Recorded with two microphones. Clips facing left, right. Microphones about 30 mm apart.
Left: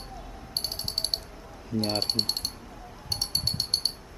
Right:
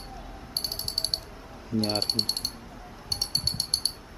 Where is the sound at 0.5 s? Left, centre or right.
Centre.